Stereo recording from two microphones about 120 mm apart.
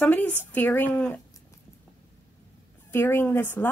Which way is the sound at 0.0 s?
15° left (ahead or behind).